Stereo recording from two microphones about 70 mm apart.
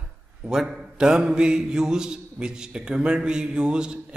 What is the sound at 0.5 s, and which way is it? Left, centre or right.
A man's voice, centre.